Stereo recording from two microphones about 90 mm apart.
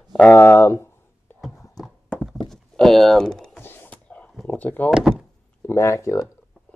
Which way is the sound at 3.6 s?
20° left (ahead or behind).